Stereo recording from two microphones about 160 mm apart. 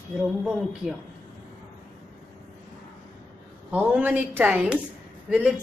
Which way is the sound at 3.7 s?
10° right (ahead or behind).